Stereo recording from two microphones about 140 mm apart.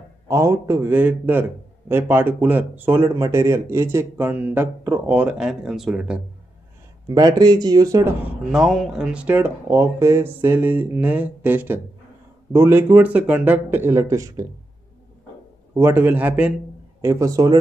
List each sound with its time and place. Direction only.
0.3 s a man's voice: 20° right (ahead or behind); by 6.2 s 5° right (ahead or behind)
7.1 s speech: 30° right (ahead or behind)
8.2 s a man's voice: 5° right (ahead or behind); by 14.4 s 25° right (ahead or behind)
15.7 s a man's voice: 15° right (ahead or behind)
17.0 s speech: 20° right (ahead or behind)